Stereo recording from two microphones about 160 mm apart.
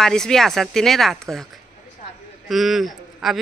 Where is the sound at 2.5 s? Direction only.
Centre (ahead or behind).